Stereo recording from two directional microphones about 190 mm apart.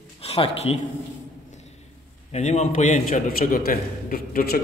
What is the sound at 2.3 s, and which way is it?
A man's voice, 35° left (ahead or behind).